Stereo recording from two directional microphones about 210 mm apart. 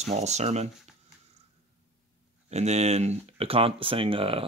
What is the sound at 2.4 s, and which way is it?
Speech, 30° right (ahead or behind).